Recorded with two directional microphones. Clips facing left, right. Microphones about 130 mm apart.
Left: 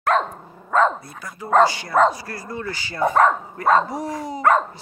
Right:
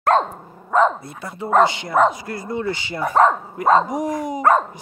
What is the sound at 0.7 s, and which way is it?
Speech, 15° right (ahead or behind).